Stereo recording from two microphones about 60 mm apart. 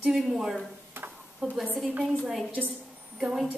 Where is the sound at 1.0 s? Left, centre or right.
Right.